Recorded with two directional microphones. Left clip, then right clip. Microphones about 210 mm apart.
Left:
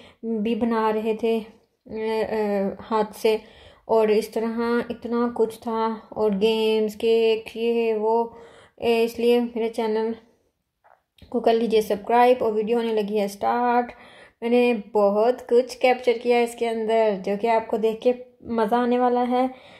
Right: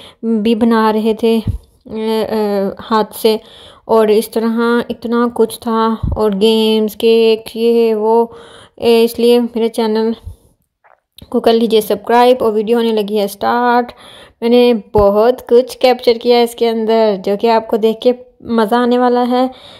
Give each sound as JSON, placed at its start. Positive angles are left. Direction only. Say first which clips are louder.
{"t": 0.3, "sound": "speech", "louder": "right 11 dB", "side_deg": -45}
{"t": 11.3, "sound": "speech", "louder": "right 9 dB", "side_deg": -45}